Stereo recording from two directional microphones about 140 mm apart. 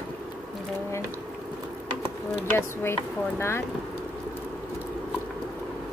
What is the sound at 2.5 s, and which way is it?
Speech, 15° left (ahead or behind).